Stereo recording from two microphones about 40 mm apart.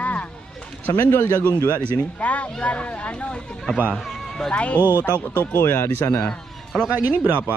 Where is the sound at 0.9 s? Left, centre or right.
Left.